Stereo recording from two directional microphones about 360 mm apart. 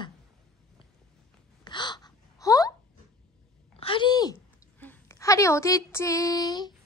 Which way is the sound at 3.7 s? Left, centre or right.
Centre.